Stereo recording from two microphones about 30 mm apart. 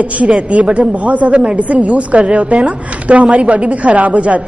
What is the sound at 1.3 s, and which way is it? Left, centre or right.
A woman's voice, right.